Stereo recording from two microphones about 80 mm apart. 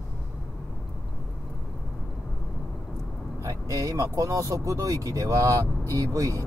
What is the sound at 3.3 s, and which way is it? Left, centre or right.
Speech, right.